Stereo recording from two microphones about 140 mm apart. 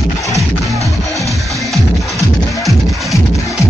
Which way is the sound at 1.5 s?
Centre (ahead or behind).